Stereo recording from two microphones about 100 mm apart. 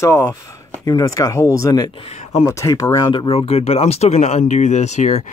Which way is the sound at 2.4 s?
30° left (ahead or behind).